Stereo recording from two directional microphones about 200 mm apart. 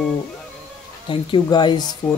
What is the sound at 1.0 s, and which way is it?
Speech, 25° left (ahead or behind).